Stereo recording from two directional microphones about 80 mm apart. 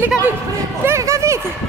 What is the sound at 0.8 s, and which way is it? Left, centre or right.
Speech, right.